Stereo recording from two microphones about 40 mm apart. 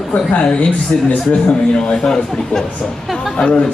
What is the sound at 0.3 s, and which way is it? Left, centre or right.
A man's voice, left.